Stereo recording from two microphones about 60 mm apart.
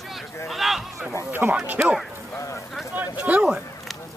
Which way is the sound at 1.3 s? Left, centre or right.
Right.